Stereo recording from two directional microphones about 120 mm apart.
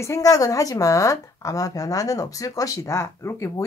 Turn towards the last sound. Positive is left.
turn(degrees=25)  # may be behind; listen again after turning